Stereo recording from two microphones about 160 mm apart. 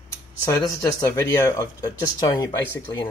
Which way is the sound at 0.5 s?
15° left (ahead or behind).